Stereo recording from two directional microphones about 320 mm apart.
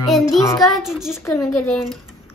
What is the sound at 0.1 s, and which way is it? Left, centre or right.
Child singing, centre.